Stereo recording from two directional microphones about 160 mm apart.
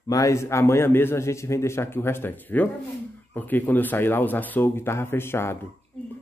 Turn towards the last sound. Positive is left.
turn(degrees=15)  # may be behind; listen again after turning